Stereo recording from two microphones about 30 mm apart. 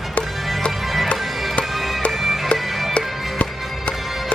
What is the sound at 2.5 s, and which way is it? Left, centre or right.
Music, left.